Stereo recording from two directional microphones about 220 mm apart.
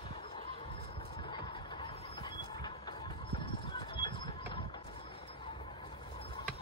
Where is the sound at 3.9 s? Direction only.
25° left (ahead or behind).